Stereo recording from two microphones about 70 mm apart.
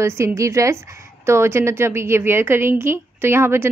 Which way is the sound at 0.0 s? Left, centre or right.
Right.